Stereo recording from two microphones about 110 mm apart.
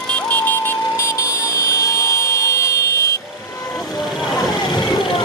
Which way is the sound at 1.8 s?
25° left (ahead or behind).